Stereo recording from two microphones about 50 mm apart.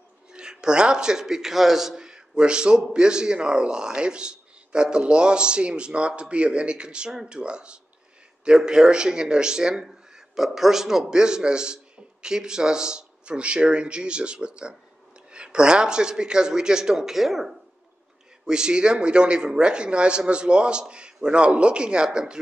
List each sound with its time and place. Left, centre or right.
0.3 s a man's voice: centre
18.4 s speech: centre